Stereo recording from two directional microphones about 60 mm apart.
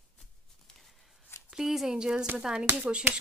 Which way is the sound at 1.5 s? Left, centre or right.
Centre.